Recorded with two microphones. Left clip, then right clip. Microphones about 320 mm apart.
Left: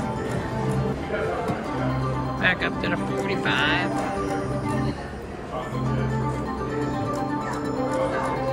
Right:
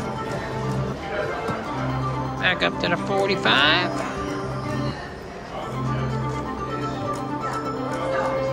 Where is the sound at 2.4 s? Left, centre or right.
Centre.